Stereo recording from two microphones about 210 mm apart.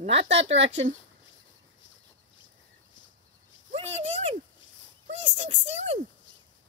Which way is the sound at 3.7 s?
30° right (ahead or behind).